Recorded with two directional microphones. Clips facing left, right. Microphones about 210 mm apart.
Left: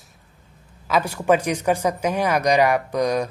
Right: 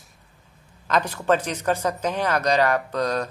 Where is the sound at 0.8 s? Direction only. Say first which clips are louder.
Left 2 dB; 10° left (ahead or behind).